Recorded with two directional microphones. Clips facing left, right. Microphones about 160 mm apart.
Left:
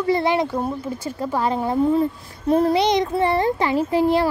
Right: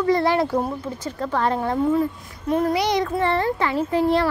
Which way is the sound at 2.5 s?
30° left (ahead or behind).